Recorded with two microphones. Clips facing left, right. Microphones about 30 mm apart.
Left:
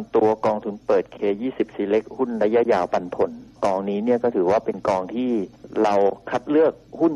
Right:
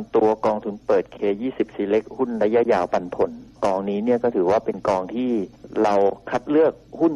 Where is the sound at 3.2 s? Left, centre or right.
Left.